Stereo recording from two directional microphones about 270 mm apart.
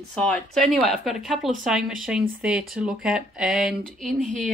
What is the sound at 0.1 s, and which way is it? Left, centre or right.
Speech, centre.